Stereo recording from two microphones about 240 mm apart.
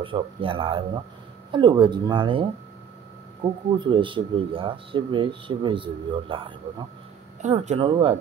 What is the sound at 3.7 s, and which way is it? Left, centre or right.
Speech, right.